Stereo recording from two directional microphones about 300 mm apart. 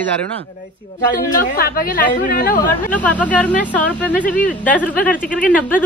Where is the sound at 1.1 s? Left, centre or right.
Left.